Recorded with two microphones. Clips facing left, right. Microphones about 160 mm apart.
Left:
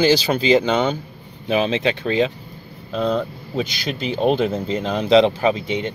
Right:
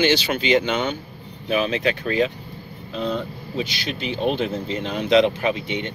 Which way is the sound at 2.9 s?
45° left (ahead or behind).